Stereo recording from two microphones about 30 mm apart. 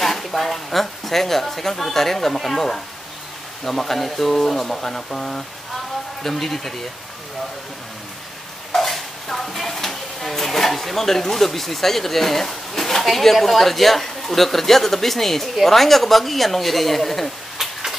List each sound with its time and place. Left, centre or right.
0.0 s a woman's voice: centre
4.9 s speech: left
6.2 s speech: centre
8.7 s speech: centre